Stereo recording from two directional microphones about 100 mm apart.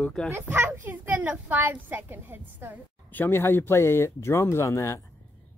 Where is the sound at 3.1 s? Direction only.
20° left (ahead or behind).